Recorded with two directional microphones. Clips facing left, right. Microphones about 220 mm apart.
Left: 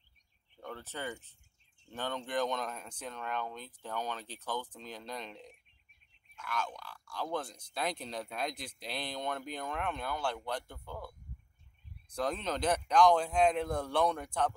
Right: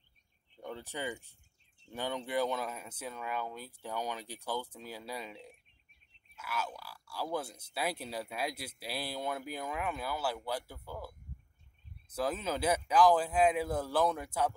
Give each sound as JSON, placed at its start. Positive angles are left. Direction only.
{"t": 0.6, "sound": "a man's voice", "side_deg": -15}